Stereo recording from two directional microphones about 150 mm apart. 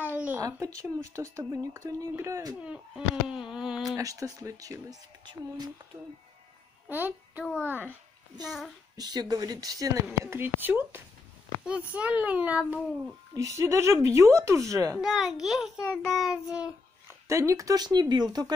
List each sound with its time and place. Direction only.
0.1 s a sound: 10° right (ahead or behind)
0.4 s speech: 20° right (ahead or behind)
3.3 s a sound: 5° right (ahead or behind)
3.9 s a woman's voice: 20° right (ahead or behind)
6.9 s a child's voice: 10° right (ahead or behind)
7.4 s a child's voice: 10° left (ahead or behind)
8.5 s a child's voice: centre (ahead or behind)
8.9 s a child's voice: 25° right (ahead or behind); by 13.1 s 10° right (ahead or behind)
13.3 s speech: 20° right (ahead or behind)
15.0 s a child's voice: centre (ahead or behind)
17.3 s speech: 20° right (ahead or behind)